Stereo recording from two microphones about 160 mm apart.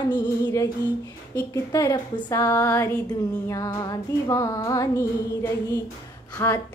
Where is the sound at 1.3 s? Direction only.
20° left (ahead or behind).